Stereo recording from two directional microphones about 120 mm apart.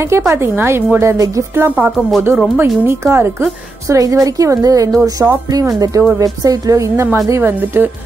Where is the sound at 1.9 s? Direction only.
Centre (ahead or behind).